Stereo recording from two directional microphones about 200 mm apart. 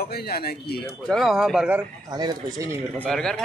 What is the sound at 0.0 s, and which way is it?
Speech, 50° left (ahead or behind).